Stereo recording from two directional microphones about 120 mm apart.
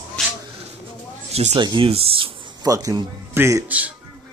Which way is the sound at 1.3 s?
60° right (ahead or behind).